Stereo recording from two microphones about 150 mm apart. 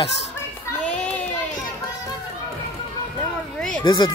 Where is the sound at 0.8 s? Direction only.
10° left (ahead or behind).